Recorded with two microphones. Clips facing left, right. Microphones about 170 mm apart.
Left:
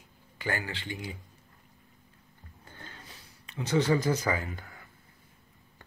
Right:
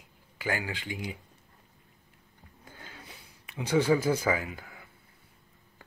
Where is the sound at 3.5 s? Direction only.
10° right (ahead or behind).